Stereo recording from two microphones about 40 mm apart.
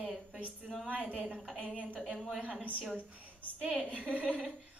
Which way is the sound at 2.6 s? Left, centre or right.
Right.